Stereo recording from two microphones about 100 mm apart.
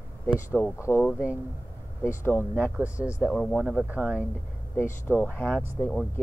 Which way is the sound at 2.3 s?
20° left (ahead or behind).